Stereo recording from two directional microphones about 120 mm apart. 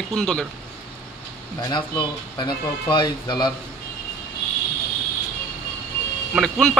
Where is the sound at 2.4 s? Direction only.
35° left (ahead or behind).